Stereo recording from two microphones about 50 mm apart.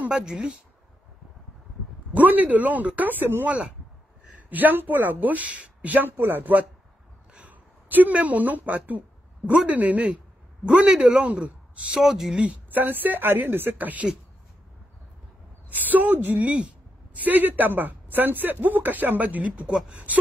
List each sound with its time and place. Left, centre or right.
0.1 s speech: centre
2.1 s speech: right
3.4 s speech: right
4.4 s a woman's voice: right
12.0 s speech: centre
12.7 s speech: right
15.7 s speech: right
16.5 s a sound: right
17.2 s speech: right